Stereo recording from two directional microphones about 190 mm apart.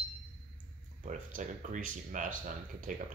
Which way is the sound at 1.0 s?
45° right (ahead or behind).